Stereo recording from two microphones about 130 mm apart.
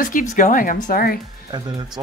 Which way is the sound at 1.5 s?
30° right (ahead or behind).